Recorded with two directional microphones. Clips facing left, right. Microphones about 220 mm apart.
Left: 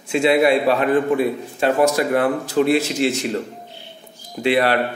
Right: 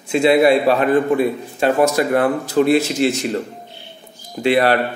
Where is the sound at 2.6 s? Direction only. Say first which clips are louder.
Right 3 dB; 45° right (ahead or behind).